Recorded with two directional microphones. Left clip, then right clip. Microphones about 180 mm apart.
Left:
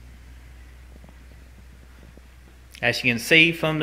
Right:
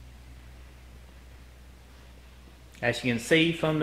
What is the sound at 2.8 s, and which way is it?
Speech, 10° left (ahead or behind).